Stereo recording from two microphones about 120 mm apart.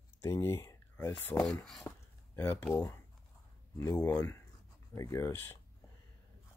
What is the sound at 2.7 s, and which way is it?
Speech, 25° left (ahead or behind).